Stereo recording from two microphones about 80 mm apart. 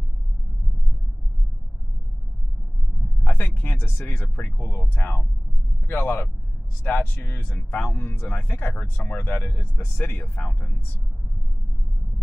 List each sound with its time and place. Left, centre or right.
3.3 s speech: left